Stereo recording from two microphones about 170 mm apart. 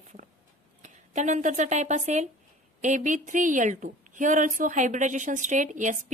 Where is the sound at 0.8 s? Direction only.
45° right (ahead or behind).